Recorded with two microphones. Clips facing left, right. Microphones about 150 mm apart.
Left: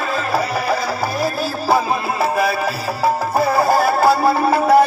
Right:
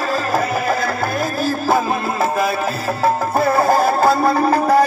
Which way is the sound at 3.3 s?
Centre (ahead or behind).